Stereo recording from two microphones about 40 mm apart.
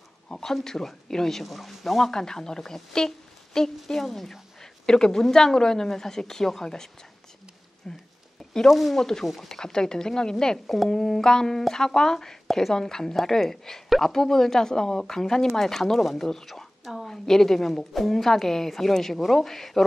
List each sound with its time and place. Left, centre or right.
0.3 s speech: centre
1.4 s speech: centre
2.0 s speech: centre
8.6 s speech: centre
8.9 s speech: centre
9.2 s speech: centre
9.6 s speech: centre
16.8 s speech: centre